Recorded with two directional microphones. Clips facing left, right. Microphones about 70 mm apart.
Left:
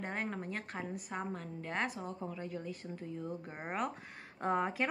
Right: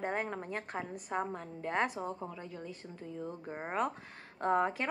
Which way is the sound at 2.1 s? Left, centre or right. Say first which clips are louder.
Left 1 dB; centre.